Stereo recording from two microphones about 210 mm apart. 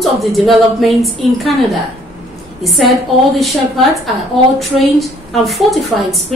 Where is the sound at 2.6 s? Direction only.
Centre (ahead or behind).